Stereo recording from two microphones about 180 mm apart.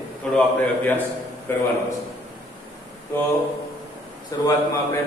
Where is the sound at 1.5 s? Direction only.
10° left (ahead or behind).